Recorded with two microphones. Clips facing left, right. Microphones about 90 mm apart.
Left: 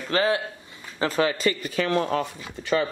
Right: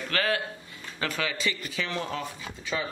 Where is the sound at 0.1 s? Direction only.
25° left (ahead or behind).